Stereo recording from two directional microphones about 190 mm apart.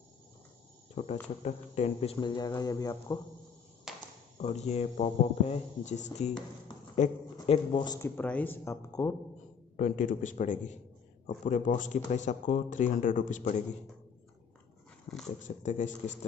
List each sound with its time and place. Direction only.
1.0 s speech: 35° left (ahead or behind); by 3.2 s 20° left (ahead or behind)
3.9 s a sound: centre (ahead or behind)
4.4 s speech: 35° left (ahead or behind)
8.2 s speech: 10° left (ahead or behind)
9.8 s speech: 40° left (ahead or behind)
15.2 s speech: 40° left (ahead or behind)